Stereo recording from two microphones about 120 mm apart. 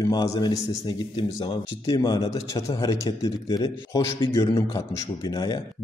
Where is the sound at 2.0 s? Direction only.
35° left (ahead or behind).